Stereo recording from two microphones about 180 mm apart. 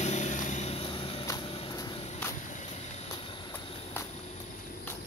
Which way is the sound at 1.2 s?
25° left (ahead or behind).